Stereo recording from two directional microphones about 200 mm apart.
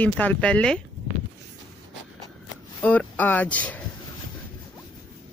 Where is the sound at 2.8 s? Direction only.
5° left (ahead or behind).